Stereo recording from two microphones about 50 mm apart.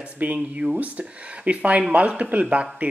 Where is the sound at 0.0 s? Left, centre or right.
Right.